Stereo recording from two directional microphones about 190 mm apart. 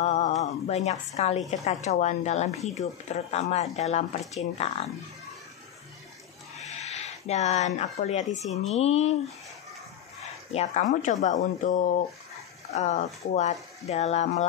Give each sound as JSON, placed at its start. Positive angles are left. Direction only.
{"t": 0.0, "sound": "a woman's voice", "side_deg": 35}
{"t": 6.6, "sound": "a woman's voice", "side_deg": 35}
{"t": 10.5, "sound": "a woman's voice", "side_deg": 35}